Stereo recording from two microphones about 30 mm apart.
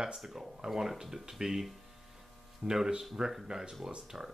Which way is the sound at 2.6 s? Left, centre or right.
Centre.